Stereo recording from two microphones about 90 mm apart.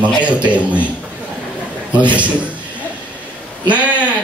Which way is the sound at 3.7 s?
15° right (ahead or behind).